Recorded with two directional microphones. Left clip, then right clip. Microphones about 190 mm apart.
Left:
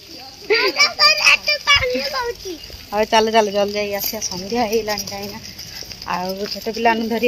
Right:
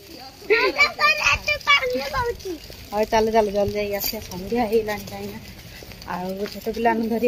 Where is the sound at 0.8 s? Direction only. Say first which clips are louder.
Left 4 dB; 25° right (ahead or behind).